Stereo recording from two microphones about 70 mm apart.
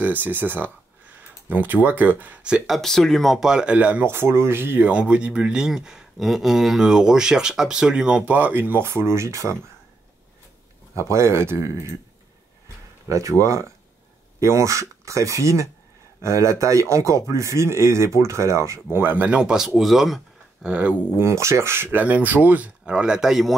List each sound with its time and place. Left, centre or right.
0.0 s speech: right; by 2.8 s centre
2.8 s speech: centre
3.3 s speech: centre
4.0 s speech: right
4.9 s speech: centre; by 9.6 s right
11.1 s speech: right
13.1 s speech: right
19.2 s speech: centre
20.6 s speech: centre
21.2 s speech: right
22.8 s speech: centre